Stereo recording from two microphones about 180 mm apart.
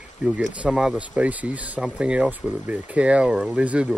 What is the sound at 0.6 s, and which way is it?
Speech, 5° right (ahead or behind).